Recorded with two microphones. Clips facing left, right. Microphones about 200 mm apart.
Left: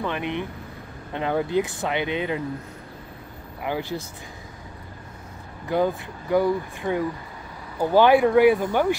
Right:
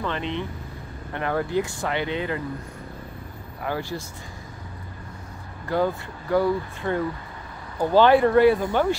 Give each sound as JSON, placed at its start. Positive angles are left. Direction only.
{"t": 0.0, "sound": "speech", "side_deg": 15}
{"t": 3.6, "sound": "speech", "side_deg": 15}
{"t": 5.7, "sound": "speech", "side_deg": 15}